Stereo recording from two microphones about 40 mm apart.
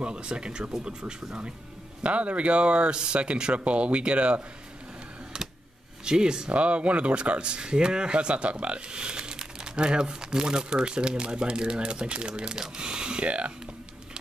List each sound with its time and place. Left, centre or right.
0.0 s speech: right
2.0 s speech: right
6.0 s speech: centre
6.5 s speech: right